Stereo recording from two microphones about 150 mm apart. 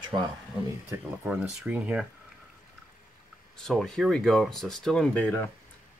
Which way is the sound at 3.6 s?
5° left (ahead or behind).